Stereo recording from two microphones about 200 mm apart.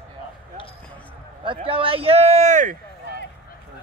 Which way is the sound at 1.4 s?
25° right (ahead or behind).